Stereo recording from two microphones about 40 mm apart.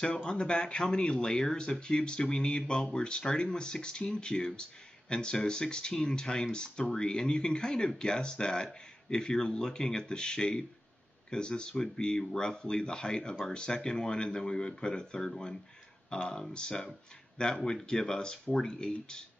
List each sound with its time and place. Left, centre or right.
0.0 s speech: centre